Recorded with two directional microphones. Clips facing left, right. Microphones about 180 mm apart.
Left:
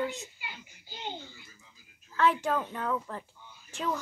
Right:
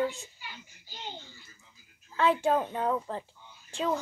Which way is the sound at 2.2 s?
25° right (ahead or behind).